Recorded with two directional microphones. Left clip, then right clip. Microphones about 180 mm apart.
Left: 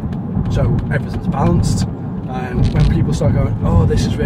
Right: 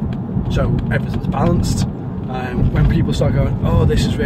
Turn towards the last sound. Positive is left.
turn(degrees=-15)  # may be behind; listen again after turning